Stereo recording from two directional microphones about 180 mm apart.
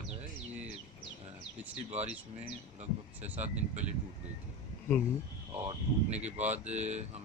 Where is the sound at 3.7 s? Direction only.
40° right (ahead or behind).